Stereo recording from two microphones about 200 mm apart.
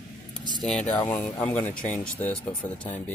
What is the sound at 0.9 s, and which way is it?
Speech, 10° left (ahead or behind).